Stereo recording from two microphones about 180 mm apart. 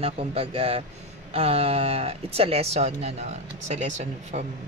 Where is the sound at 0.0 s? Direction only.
30° right (ahead or behind).